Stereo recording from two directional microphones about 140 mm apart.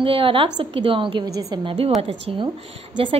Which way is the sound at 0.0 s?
40° right (ahead or behind).